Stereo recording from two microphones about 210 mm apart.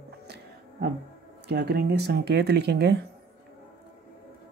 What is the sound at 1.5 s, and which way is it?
Speech, 50° right (ahead or behind).